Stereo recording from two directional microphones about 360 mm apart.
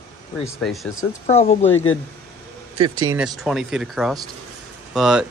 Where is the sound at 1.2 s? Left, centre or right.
Centre.